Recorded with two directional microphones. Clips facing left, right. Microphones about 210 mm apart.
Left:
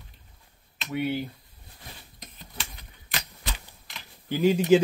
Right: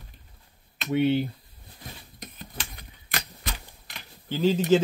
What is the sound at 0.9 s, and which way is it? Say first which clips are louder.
Speech: right 6 dB; 25° right (ahead or behind).